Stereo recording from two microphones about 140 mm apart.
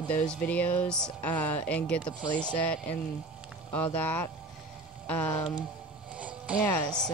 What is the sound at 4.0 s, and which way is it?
Speech, 10° left (ahead or behind).